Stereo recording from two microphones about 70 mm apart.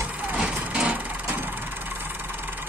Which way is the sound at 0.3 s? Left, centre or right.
Centre.